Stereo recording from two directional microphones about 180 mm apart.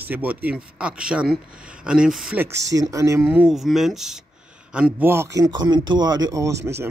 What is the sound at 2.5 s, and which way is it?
Speech, 20° right (ahead or behind).